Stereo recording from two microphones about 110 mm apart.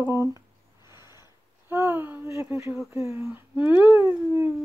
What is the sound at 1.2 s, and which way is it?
Speech, 20° right (ahead or behind).